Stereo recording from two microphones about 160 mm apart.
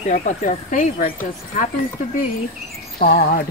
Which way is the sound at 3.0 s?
65° left (ahead or behind).